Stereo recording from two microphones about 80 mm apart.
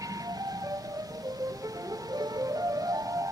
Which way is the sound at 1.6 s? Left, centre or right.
Right.